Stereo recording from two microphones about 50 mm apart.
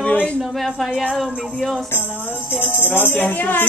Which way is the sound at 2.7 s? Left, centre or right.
Left.